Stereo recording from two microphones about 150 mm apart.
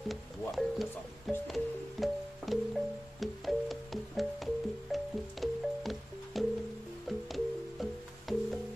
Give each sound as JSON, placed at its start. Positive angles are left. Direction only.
{"t": 0.1, "sound": "music", "side_deg": 0}